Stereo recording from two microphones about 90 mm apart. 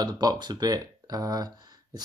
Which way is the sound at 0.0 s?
45° right (ahead or behind).